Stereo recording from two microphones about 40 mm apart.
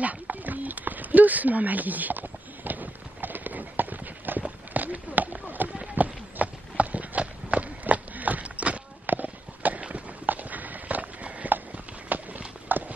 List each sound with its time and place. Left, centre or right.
0.0 s a sound: right
4.4 s run: right
7.8 s a sound: right
9.0 s walk: right
9.8 s run: right
10.2 s walk: right
12.1 s horse: right